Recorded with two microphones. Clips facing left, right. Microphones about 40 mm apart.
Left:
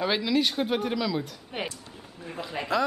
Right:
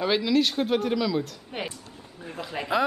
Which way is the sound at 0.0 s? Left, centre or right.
Centre.